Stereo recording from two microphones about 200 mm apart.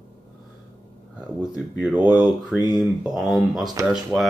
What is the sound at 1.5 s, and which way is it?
Speech, 5° right (ahead or behind).